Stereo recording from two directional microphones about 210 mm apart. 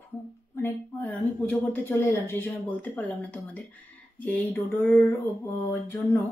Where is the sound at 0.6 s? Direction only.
10° left (ahead or behind).